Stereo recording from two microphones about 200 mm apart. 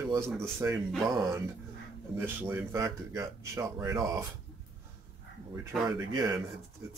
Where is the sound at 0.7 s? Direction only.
Centre (ahead or behind).